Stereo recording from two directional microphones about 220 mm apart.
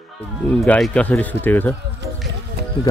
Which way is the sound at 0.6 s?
5° left (ahead or behind).